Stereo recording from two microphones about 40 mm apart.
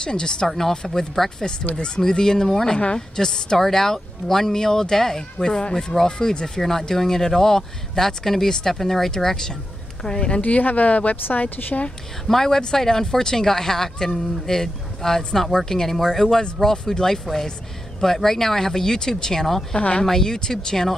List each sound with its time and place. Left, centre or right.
0.0 s a woman's voice: centre
10.0 s a woman's voice: left
10.4 s a woman's voice: left
12.3 s a woman's voice: centre
20.1 s speech: centre